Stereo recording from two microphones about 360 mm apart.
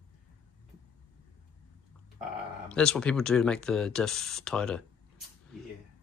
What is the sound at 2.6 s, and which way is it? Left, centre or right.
Speech, centre.